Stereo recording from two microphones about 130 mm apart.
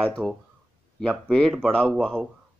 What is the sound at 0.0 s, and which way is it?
A man's voice, 5° left (ahead or behind).